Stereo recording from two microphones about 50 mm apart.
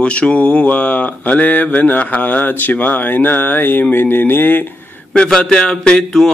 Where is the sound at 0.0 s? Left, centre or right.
Left.